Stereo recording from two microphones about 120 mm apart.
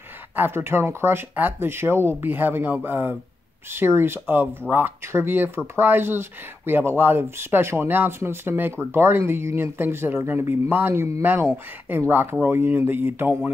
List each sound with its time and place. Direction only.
0.4 s speech: 20° right (ahead or behind)